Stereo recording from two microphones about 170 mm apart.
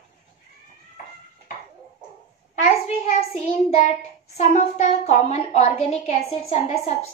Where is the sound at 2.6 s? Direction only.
40° left (ahead or behind).